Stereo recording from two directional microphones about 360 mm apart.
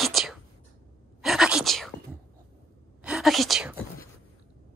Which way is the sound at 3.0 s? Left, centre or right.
Centre.